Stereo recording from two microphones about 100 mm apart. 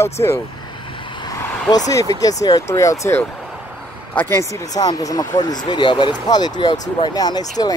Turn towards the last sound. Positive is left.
turn(degrees=40)  # may be behind; listen again after turning